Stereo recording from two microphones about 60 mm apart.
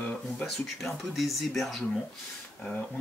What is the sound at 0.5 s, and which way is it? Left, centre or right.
Speech, centre.